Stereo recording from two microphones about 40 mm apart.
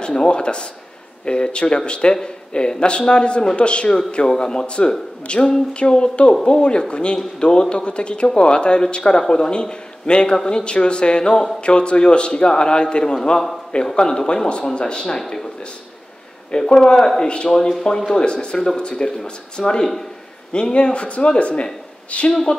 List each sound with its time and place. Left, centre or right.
0.0 s speech: left
16.5 s speech: centre
17.2 s speech: left
17.5 s speech: centre
18.2 s speech: left